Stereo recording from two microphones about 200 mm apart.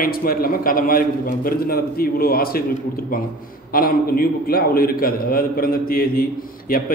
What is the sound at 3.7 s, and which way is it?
A man's voice, 45° left (ahead or behind).